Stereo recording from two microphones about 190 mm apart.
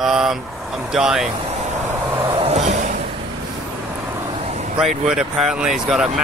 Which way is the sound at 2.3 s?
35° right (ahead or behind).